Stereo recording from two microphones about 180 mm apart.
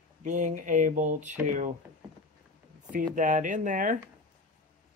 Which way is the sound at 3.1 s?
45° right (ahead or behind).